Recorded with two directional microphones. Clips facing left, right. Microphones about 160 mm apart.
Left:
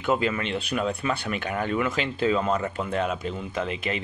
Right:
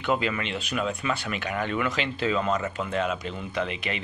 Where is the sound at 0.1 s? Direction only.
35° left (ahead or behind).